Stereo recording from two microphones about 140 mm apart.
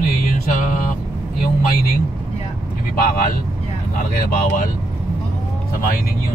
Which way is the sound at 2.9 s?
90° left.